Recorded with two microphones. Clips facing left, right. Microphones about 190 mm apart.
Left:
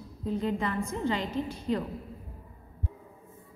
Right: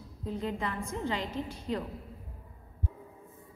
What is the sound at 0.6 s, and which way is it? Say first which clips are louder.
Speech: left 4 dB; 10° right (ahead or behind).